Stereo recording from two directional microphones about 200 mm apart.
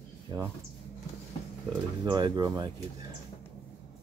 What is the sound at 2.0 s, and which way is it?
Speech, 20° right (ahead or behind).